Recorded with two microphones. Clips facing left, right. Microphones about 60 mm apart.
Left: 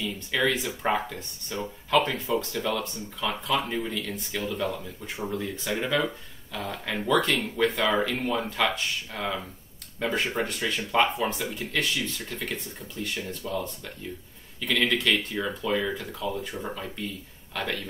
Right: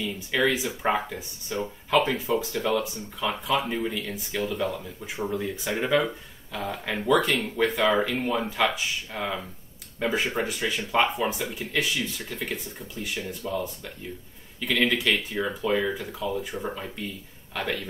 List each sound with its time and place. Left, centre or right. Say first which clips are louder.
0.0 s speech: right 2 dB; centre